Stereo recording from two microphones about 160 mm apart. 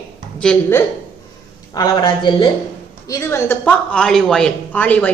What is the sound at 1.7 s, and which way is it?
A woman's voice, 25° left (ahead or behind).